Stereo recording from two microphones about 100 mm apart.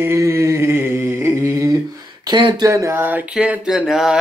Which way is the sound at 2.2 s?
45° right (ahead or behind).